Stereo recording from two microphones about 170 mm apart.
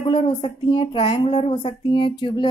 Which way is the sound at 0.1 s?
30° left (ahead or behind).